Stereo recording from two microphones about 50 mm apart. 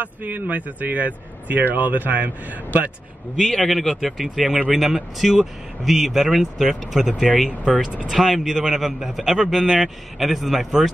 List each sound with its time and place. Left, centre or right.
0.0 s speech: right
3.3 s a man's voice: centre